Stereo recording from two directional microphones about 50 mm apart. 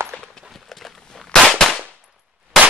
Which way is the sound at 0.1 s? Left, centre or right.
Centre.